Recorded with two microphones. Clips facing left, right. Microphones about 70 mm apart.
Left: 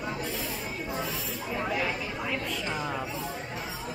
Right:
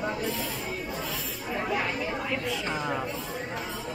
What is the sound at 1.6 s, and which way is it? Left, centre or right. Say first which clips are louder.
Speech: right 2 dB; centre.